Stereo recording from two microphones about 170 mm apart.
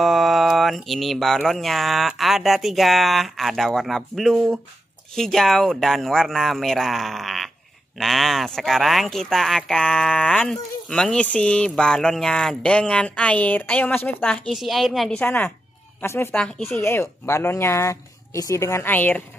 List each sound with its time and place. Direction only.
0.0 s speech: centre (ahead or behind)